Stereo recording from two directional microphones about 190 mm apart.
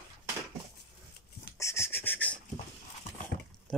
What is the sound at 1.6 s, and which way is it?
Beatboxing, 15° left (ahead or behind).